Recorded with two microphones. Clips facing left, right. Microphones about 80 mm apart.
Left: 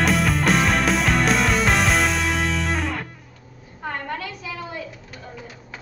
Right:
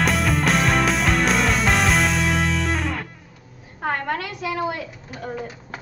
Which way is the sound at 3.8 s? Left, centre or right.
Right.